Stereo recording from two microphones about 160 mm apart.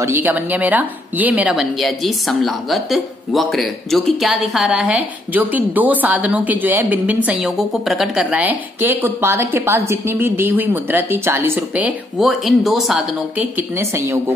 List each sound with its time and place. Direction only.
0.0 s a woman's voice: 15° right (ahead or behind)
13.6 s a woman's voice: 15° right (ahead or behind)